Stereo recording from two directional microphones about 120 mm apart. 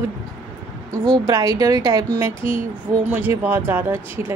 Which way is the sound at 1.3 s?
30° right (ahead or behind).